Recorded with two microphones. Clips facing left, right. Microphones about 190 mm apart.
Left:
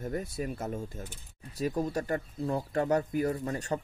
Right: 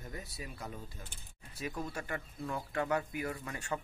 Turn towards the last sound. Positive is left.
turn(degrees=35)  # may be behind; listen again after turning